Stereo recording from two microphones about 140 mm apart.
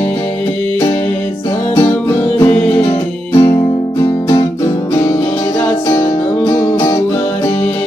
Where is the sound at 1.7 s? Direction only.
20° left (ahead or behind).